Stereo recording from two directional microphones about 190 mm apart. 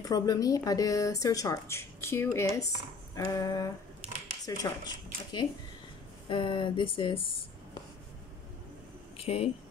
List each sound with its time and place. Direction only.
0.1 s speech: 20° left (ahead or behind)
9.1 s speech: 30° left (ahead or behind)